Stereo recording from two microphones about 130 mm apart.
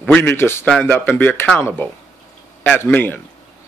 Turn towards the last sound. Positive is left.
turn(degrees=15)  # may be behind; listen again after turning